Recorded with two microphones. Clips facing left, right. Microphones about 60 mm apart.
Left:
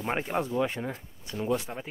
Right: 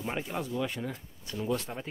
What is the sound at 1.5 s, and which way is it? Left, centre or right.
Speech, centre.